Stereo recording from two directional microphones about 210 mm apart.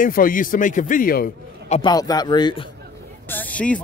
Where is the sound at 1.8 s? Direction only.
20° left (ahead or behind).